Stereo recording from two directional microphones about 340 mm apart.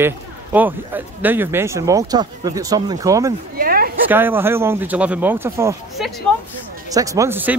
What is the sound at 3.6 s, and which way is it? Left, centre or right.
Speech, right.